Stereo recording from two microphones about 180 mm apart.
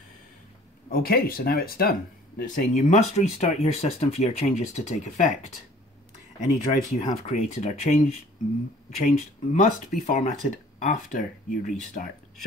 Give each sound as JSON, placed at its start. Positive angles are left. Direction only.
{"t": 0.8, "sound": "speech", "side_deg": 55}
{"t": 2.7, "sound": "speech", "side_deg": 40}
{"t": 6.4, "sound": "speech", "side_deg": 45}
{"t": 9.0, "sound": "speech", "side_deg": 45}